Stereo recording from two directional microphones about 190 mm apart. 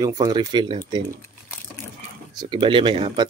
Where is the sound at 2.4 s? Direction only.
25° right (ahead or behind).